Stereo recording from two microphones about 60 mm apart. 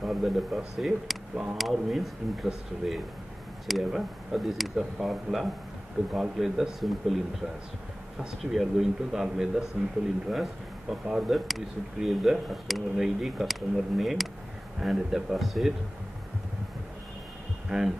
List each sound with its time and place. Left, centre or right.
0.0 s speech: centre
1.3 s a man's voice: centre
1.6 s speech: centre
8.2 s a man's voice: centre
17.6 s speech: centre